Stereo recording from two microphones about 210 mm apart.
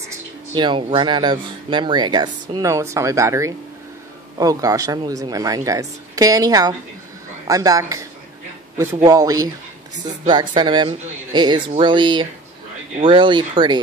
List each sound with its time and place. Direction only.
0.6 s speech: 25° right (ahead or behind)